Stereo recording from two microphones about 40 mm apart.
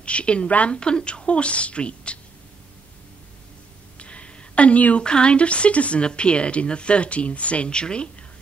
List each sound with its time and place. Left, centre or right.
0.0 s a woman's voice: left
4.0 s a sound: left
5.0 s a woman's voice: left